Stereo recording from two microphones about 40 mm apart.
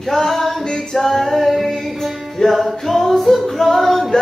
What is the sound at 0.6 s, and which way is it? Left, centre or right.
Music, centre.